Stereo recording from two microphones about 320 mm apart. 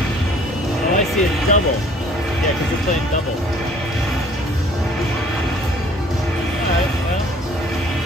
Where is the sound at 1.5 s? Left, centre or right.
Left.